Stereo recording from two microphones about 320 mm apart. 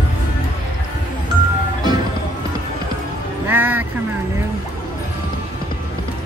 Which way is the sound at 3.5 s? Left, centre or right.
Centre.